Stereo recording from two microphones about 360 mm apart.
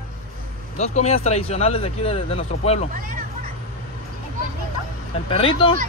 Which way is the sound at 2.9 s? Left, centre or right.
Right.